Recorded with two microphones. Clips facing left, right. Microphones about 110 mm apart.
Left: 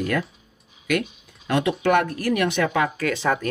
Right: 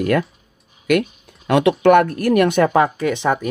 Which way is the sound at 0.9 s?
55° right (ahead or behind).